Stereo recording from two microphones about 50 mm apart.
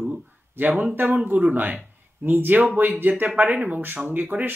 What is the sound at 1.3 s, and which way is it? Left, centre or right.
Speech, right.